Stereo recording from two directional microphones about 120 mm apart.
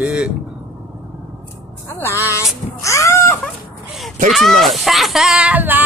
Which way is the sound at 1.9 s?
20° left (ahead or behind).